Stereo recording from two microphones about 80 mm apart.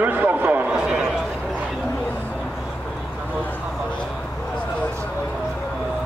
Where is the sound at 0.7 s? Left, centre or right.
Centre.